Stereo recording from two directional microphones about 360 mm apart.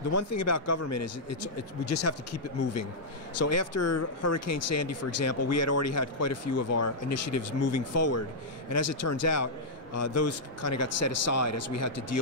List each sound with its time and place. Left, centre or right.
0.1 s speech: left